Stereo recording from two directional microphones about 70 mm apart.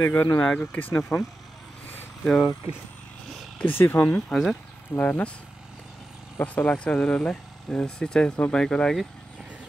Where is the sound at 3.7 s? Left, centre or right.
Left.